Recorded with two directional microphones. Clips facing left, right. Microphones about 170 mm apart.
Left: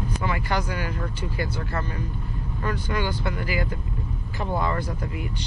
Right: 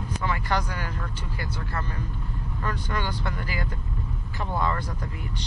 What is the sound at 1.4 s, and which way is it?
Speech, 30° left (ahead or behind).